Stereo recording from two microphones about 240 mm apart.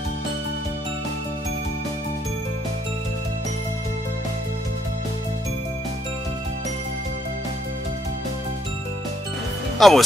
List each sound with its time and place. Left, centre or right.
9.8 s speech: centre